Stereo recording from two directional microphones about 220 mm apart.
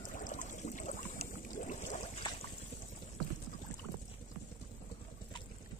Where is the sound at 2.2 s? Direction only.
20° left (ahead or behind).